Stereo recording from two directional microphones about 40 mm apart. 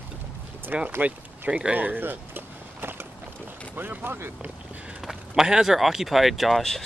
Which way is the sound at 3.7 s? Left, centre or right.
Right.